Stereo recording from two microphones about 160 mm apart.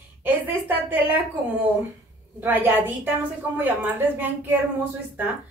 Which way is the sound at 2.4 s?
10° right (ahead or behind).